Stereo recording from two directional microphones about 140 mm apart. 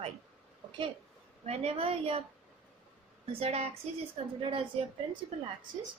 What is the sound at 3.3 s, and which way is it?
A woman's voice, 45° right (ahead or behind).